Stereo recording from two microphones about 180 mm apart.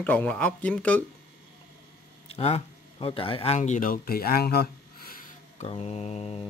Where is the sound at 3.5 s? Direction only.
45° left (ahead or behind).